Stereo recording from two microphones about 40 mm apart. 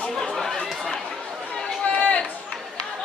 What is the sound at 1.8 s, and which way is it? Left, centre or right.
Chatter, left.